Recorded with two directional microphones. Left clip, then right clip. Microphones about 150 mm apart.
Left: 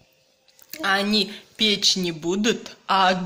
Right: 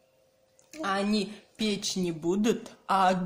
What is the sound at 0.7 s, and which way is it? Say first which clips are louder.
A woman's voice: left 8 dB; 10° right (ahead or behind).